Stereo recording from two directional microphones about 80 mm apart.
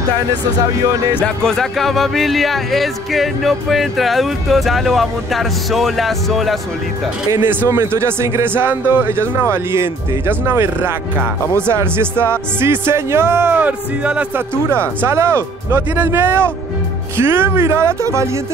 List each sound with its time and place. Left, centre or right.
1.2 s speech: centre
7.4 s speech: right
14.7 s speech: right